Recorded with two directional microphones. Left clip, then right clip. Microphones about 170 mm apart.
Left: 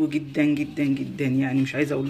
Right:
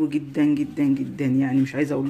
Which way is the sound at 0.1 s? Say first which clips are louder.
Right 1 dB; 35° right (ahead or behind).